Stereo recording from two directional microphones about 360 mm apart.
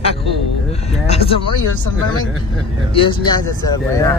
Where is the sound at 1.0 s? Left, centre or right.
Centre.